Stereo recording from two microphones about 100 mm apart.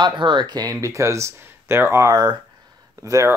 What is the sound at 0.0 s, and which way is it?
Speech, 50° right (ahead or behind).